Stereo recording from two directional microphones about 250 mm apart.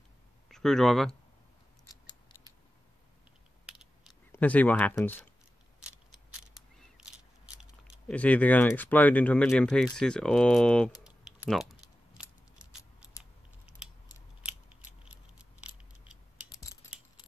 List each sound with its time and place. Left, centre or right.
0.5 s speech: centre
1.9 s scissors: centre
3.6 s a sound: centre
4.3 s speech: centre
7.0 s biting: centre
7.9 s speech: centre
12.2 s scissors: centre
14.4 s scissors: centre
15.6 s a sound: centre